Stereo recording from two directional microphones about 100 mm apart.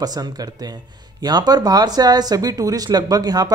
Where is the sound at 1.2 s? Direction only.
45° right (ahead or behind).